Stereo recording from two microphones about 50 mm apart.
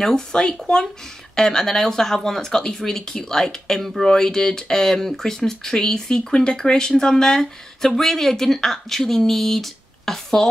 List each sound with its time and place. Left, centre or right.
0.0 s speech: centre